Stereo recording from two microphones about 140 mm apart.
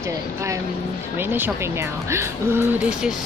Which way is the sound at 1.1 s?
15° right (ahead or behind).